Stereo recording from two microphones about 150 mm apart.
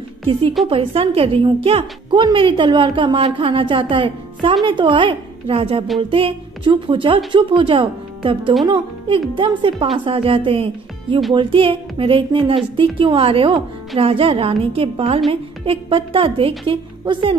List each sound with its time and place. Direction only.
0.3 s a woman's voice: 35° right (ahead or behind)